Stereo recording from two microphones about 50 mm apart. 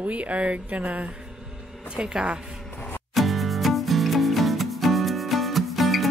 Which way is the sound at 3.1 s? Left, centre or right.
Centre.